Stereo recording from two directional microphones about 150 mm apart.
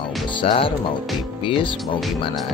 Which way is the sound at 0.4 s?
35° left (ahead or behind).